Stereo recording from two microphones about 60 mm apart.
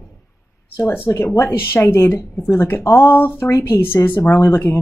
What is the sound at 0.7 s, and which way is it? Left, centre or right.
Speech, left.